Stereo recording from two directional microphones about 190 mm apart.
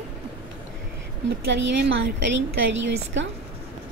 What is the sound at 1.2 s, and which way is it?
A woman's voice, 70° right (ahead or behind).